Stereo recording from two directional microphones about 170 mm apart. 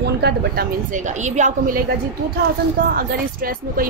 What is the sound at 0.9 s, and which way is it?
Speech, 45° right (ahead or behind).